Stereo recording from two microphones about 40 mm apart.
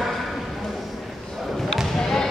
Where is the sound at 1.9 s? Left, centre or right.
Centre.